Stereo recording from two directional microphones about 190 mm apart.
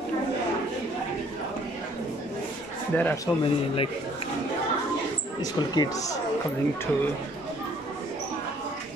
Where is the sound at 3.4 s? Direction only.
30° left (ahead or behind).